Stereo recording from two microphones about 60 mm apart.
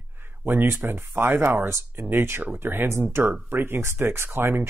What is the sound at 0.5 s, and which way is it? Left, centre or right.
Speech, right.